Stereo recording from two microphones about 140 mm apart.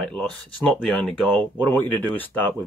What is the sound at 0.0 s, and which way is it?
Speech, 10° left (ahead or behind).